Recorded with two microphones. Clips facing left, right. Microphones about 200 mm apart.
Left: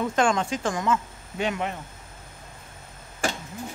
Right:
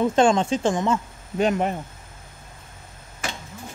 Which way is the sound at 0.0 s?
25° right (ahead or behind).